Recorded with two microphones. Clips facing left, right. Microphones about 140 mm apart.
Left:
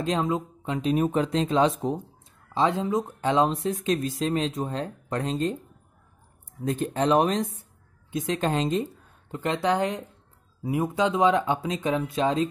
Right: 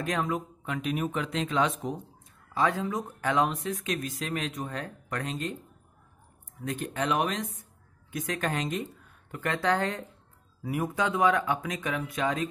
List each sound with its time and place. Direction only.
0.0 s speech: 25° left (ahead or behind)
6.6 s speech: 35° left (ahead or behind)